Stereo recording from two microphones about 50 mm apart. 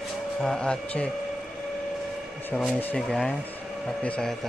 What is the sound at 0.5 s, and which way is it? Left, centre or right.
Speech, centre.